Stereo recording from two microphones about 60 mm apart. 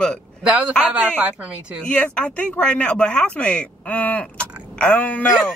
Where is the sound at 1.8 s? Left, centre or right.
Centre.